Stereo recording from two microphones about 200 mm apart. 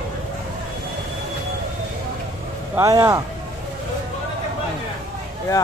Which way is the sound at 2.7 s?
15° right (ahead or behind).